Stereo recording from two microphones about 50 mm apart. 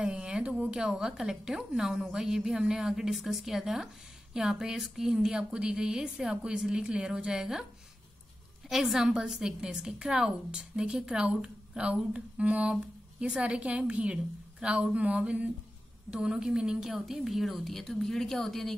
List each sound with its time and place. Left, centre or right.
0.0 s a woman's voice: centre
8.6 s a woman's voice: centre